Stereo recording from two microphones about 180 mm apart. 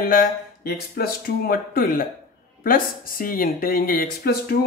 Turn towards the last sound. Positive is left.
turn(degrees=55)  # may be behind; listen again after turning